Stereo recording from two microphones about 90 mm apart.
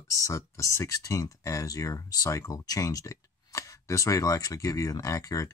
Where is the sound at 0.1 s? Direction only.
35° left (ahead or behind).